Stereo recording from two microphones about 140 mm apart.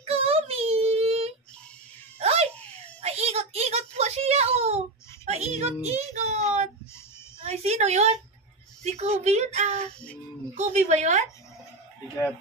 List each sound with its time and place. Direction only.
0.0 s child singing: 45° right (ahead or behind)
2.1 s baby laughter: 50° right (ahead or behind)
3.0 s a sound: 50° right (ahead or behind)
5.2 s speech: 55° right (ahead or behind)
7.4 s a sound: 50° right (ahead or behind)
8.8 s speech: 50° right (ahead or behind)